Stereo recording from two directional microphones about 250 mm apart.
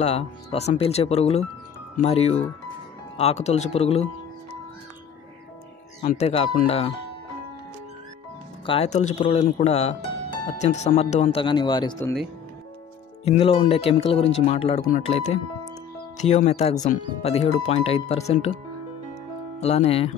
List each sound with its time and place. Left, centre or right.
0.0 s speech: left
6.1 s speech: left
8.6 s speech: left
13.2 s speech: left
19.6 s speech: left